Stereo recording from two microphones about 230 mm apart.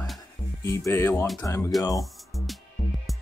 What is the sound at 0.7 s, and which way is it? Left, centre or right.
Speech, centre.